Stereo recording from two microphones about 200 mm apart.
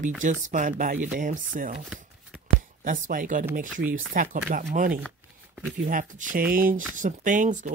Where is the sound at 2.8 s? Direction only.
40° right (ahead or behind).